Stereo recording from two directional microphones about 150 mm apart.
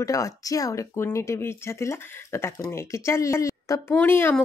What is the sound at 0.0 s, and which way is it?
Speech, 20° left (ahead or behind).